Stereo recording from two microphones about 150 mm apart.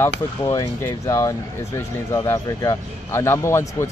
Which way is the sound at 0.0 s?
20° left (ahead or behind).